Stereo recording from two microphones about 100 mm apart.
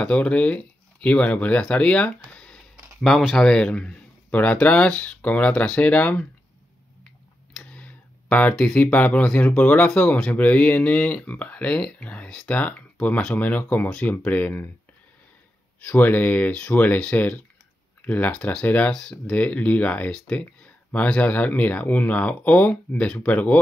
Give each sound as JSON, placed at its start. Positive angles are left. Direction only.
{"t": 0.0, "sound": "speech", "side_deg": 15}
{"t": 7.5, "sound": "speech", "side_deg": 10}
{"t": 15.8, "sound": "speech", "side_deg": 20}